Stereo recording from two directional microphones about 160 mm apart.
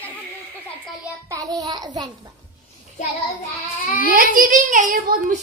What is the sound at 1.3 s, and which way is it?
Child singing, 20° right (ahead or behind).